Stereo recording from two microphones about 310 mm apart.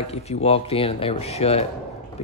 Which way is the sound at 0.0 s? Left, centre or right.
Centre.